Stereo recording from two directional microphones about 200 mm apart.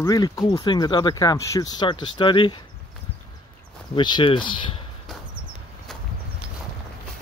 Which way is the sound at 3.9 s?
25° left (ahead or behind).